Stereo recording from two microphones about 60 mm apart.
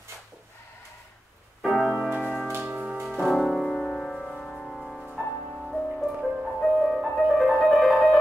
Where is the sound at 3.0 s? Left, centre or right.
Centre.